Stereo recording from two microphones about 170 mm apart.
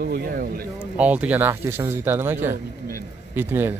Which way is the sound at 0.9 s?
10° right (ahead or behind).